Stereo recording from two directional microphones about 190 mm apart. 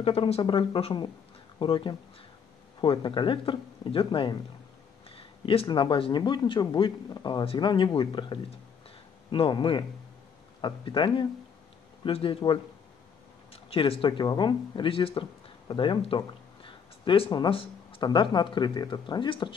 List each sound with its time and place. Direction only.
0.0 s a man's voice: 30° left (ahead or behind)